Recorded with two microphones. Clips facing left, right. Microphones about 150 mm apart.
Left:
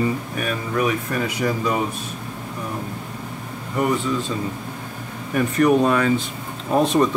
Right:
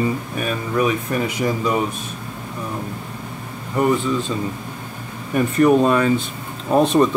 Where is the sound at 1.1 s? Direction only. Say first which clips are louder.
Right 2 dB; 20° right (ahead or behind).